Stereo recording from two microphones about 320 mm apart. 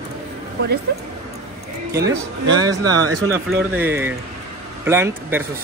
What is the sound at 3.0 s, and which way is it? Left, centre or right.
Speech, right.